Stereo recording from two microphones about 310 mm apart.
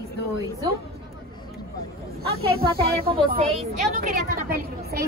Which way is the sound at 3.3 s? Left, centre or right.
Right.